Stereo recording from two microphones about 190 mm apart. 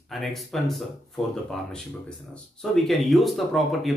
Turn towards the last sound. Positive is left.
turn(degrees=0)  # may be behind; listen again after turning